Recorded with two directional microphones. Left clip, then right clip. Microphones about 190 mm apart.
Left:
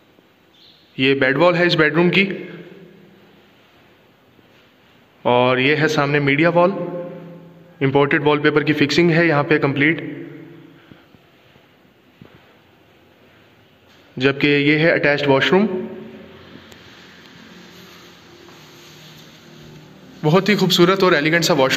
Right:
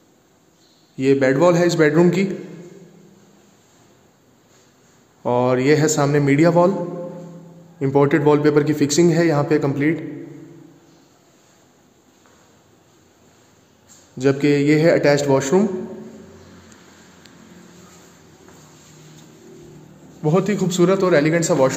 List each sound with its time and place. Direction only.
0.9 s a man's voice: 10° right (ahead or behind)
5.2 s a man's voice: 15° right (ahead or behind)
7.8 s a man's voice: 10° right (ahead or behind)
14.1 s a man's voice: 10° right (ahead or behind)
20.2 s a man's voice: 5° right (ahead or behind)